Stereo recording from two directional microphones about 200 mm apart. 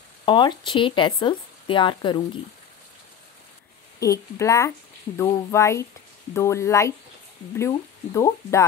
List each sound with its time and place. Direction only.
0.2 s speech: 25° left (ahead or behind)
4.0 s speech: 15° left (ahead or behind)